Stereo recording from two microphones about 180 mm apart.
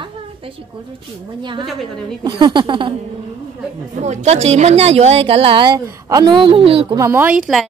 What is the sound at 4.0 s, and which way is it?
A woman's voice, 40° right (ahead or behind).